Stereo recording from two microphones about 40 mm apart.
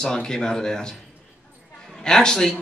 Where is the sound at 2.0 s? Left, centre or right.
Centre.